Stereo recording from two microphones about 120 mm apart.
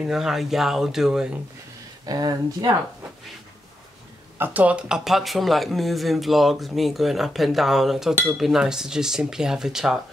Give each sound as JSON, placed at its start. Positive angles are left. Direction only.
{"t": 0.0, "sound": "speech", "side_deg": -5}
{"t": 2.0, "sound": "speech", "side_deg": -35}
{"t": 4.4, "sound": "speech", "side_deg": -15}